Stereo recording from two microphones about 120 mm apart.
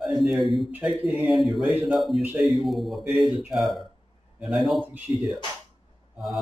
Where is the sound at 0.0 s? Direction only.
Centre (ahead or behind).